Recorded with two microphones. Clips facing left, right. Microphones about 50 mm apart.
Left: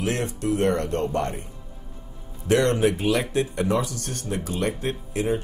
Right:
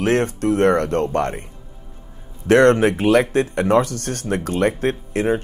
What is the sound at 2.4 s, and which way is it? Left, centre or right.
Speech, right.